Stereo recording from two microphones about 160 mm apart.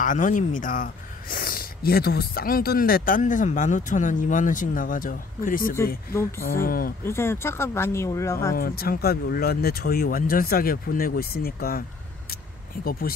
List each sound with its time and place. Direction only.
0.0 s speech: 55° left (ahead or behind)
6.1 s speech: 15° left (ahead or behind)
6.6 s speech: 65° left (ahead or behind)
7.1 s speech: 15° left (ahead or behind)
8.5 s speech: 65° left (ahead or behind)